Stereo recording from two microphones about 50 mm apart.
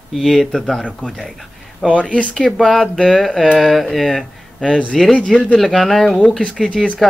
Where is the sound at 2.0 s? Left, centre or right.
Left.